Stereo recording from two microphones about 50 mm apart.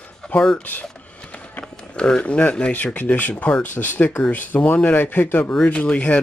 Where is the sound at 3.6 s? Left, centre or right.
Left.